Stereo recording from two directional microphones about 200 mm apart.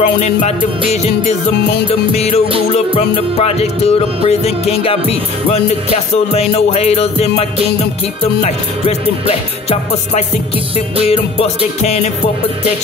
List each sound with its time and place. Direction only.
0.0 s music: 35° left (ahead or behind)
2.1 s music: 30° left (ahead or behind)